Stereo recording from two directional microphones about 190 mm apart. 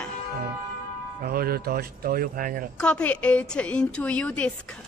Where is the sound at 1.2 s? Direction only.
50° right (ahead or behind).